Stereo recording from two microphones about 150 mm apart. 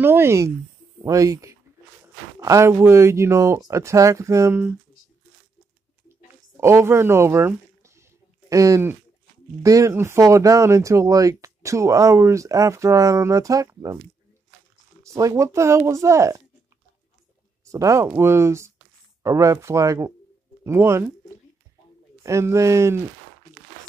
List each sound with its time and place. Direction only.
0.0 s speech: 15° right (ahead or behind)
6.5 s a sound: 15° right (ahead or behind)
9.6 s speech: 20° right (ahead or behind)
15.0 s speech: 20° right (ahead or behind)
17.6 s speech: 20° right (ahead or behind)
22.2 s speech: 20° right (ahead or behind)